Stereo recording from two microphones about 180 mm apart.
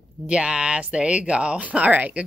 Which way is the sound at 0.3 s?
5° right (ahead or behind).